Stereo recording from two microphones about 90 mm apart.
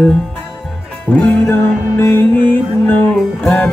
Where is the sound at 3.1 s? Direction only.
5° left (ahead or behind).